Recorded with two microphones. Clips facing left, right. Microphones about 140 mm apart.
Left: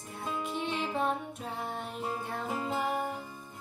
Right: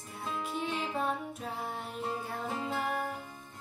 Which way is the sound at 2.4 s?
15° left (ahead or behind).